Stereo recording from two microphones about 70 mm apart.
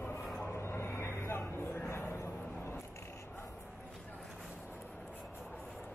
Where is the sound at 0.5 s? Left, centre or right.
Left.